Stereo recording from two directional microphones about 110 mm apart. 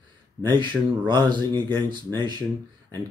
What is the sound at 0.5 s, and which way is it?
Speech, 45° right (ahead or behind).